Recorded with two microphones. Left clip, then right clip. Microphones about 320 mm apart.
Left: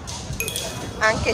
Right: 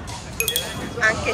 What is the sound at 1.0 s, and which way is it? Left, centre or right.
Speech, centre.